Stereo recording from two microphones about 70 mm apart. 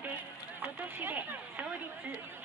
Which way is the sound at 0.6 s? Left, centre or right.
Right.